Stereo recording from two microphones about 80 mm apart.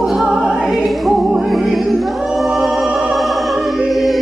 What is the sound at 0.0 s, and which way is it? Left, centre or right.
Music, centre.